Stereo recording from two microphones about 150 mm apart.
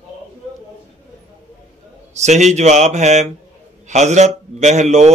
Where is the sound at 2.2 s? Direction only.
50° right (ahead or behind).